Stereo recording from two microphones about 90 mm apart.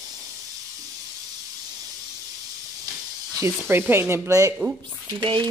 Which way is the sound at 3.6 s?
25° right (ahead or behind).